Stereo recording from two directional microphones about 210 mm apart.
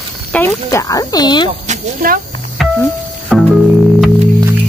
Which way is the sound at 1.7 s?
40° right (ahead or behind).